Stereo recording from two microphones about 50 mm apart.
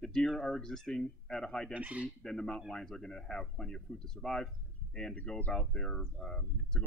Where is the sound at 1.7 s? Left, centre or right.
Right.